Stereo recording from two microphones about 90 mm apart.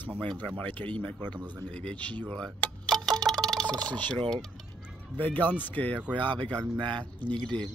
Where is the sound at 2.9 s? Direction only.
5° left (ahead or behind).